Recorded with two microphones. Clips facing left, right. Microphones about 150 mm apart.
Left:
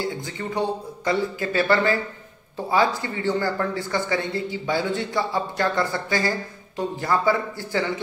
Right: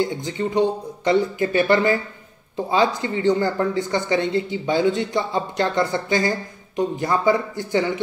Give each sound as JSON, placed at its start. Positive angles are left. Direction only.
{"t": 0.0, "sound": "speech", "side_deg": -20}